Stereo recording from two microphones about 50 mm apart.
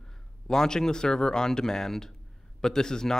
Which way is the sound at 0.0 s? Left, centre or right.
Centre.